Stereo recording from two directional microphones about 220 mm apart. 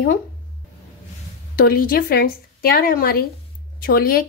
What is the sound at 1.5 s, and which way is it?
Speech, 40° left (ahead or behind).